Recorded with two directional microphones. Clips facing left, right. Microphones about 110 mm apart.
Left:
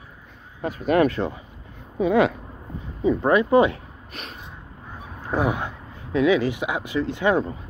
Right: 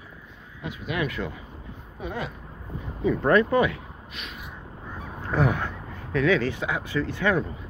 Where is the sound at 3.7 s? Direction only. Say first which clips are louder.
Left 1 dB; 35° left (ahead or behind).